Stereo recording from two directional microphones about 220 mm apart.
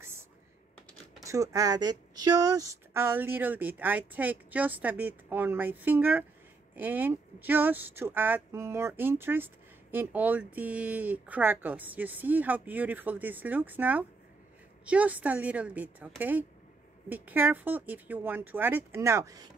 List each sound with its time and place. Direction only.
1.2 s speech: 15° right (ahead or behind)